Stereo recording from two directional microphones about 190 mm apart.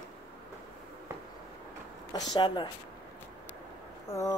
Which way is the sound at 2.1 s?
25° left (ahead or behind).